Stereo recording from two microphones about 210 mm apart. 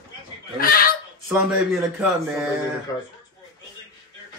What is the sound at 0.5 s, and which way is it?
Chuckle, 45° left (ahead or behind).